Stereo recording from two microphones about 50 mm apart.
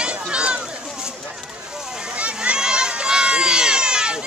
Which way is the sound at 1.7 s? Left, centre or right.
Centre.